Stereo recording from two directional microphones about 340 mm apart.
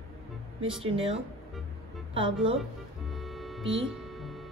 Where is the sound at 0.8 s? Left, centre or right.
Centre.